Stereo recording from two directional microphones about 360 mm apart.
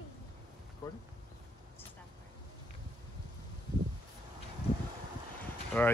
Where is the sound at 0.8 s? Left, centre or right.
Centre.